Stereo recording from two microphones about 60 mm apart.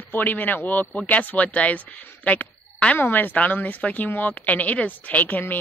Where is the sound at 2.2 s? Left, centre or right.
Left.